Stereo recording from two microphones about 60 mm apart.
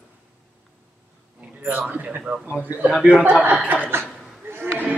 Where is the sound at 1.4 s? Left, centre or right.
Right.